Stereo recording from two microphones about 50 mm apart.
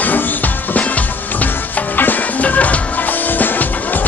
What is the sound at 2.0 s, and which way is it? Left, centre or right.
Music, left.